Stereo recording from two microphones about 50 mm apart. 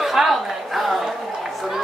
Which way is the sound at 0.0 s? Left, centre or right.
Centre.